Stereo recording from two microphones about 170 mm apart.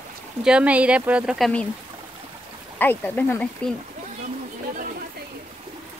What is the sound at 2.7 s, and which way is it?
Speech, 10° left (ahead or behind).